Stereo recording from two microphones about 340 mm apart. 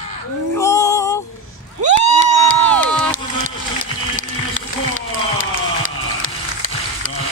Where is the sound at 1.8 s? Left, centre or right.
Centre.